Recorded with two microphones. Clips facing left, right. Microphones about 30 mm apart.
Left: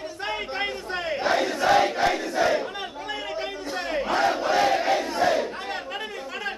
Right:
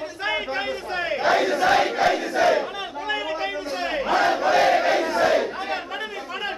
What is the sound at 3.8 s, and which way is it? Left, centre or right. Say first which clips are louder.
Battle cry: right 2 dB; right.